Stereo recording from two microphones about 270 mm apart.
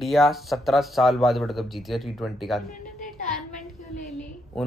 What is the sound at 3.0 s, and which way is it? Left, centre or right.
Child singing, left.